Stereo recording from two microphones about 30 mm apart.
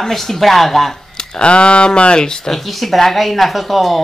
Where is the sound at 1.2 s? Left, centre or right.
Left.